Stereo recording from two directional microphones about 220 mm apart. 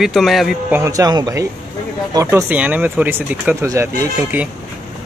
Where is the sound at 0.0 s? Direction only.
Centre (ahead or behind).